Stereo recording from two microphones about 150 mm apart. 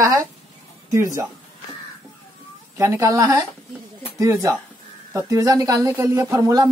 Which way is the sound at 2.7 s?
20° right (ahead or behind).